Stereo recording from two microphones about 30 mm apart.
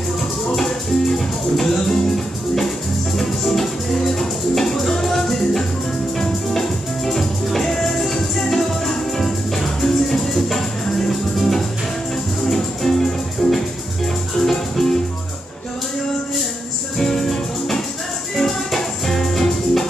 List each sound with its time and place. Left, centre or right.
0.6 s music: centre
17.0 s music: centre